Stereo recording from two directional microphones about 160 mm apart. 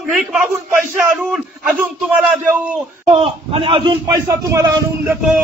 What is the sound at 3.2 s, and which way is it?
Speech, 35° right (ahead or behind).